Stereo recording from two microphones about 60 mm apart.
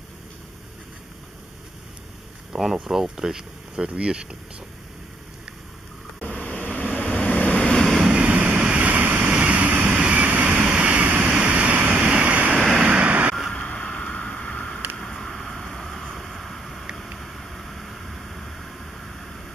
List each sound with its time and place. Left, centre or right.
2.5 s speech: centre
6.3 s vehicle: centre
7.6 s waves: centre
8.0 s vehicle: centre
12.5 s vehicle: centre
12.9 s a sound: right
13.5 s vehicle: centre
15.0 s a sound: centre